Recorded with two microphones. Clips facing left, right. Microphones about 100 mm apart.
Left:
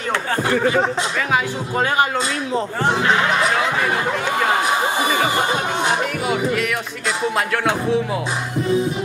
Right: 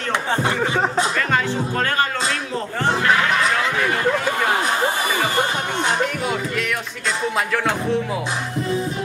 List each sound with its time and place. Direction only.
0.4 s speech: 25° right (ahead or behind)
1.3 s speech: 10° left (ahead or behind)
6.2 s music: centre (ahead or behind)
7.2 s speech: centre (ahead or behind)